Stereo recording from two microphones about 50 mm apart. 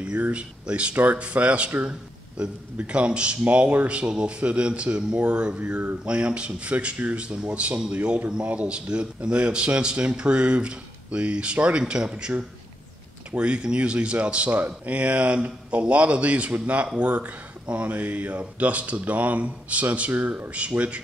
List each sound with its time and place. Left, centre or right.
0.0 s speech: right
1.9 s speech: centre